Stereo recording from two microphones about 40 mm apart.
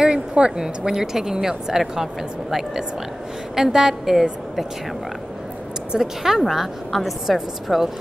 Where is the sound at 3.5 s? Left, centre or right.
Centre.